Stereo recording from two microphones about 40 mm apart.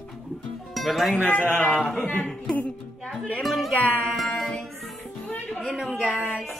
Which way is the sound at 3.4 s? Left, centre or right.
Centre.